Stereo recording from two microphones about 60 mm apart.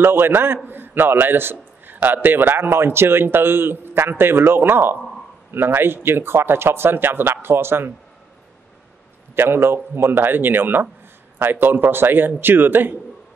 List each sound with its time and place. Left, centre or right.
0.0 s a man's voice: right
9.3 s a man's voice: right